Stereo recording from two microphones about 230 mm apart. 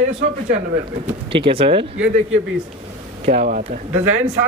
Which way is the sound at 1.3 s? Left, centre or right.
Right.